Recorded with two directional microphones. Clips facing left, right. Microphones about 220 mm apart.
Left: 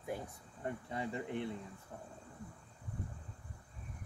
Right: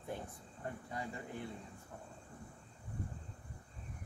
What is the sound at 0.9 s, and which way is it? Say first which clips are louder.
Speech: left 7 dB; 25° left (ahead or behind).